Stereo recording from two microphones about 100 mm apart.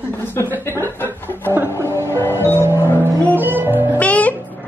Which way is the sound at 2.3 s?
25° right (ahead or behind).